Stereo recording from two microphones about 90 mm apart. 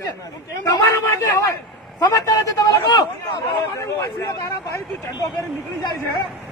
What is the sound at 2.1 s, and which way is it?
A man's voice, 40° left (ahead or behind).